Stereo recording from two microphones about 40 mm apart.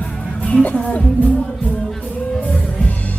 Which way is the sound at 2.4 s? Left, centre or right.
Left.